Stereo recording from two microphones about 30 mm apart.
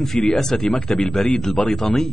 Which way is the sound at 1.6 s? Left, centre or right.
Left.